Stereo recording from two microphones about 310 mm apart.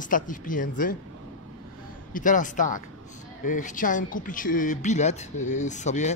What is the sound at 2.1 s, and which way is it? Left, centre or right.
Speech, left.